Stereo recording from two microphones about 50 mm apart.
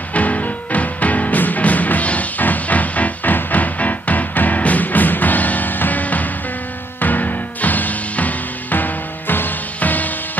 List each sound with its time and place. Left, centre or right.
0.1 s music: left
9.3 s music: left